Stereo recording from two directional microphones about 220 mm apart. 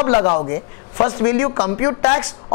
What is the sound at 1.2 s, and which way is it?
Speech, 15° left (ahead or behind).